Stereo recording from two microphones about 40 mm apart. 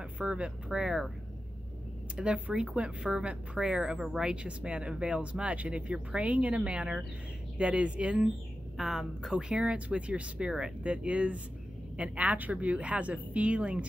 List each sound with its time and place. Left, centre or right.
0.2 s speech: right
2.1 s speech: right
8.7 s a woman's voice: centre
9.3 s speech: right
9.8 s a woman's voice: right